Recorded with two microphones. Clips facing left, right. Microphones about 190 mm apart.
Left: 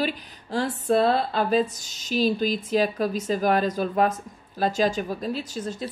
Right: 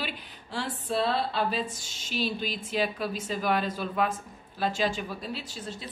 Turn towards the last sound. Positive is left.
turn(degrees=45)  # may be behind; listen again after turning